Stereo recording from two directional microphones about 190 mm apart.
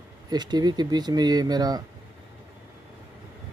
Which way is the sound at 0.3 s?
20° right (ahead or behind).